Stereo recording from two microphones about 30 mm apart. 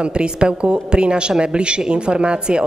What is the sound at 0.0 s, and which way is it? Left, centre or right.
A woman's voice, right.